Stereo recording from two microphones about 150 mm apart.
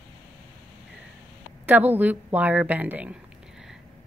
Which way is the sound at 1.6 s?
10° right (ahead or behind).